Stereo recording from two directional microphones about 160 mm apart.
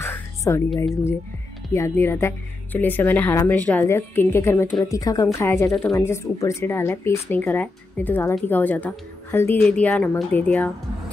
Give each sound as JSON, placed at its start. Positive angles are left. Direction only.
{"t": 0.0, "sound": "music", "side_deg": 15}
{"t": 1.7, "sound": "speech", "side_deg": 15}